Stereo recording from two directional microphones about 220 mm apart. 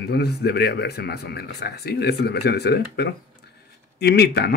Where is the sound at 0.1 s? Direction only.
45° left (ahead or behind).